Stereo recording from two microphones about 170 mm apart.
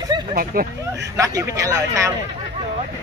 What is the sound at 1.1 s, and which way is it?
Speech, 20° right (ahead or behind).